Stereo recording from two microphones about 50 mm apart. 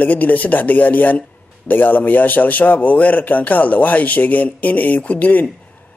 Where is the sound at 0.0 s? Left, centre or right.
Left.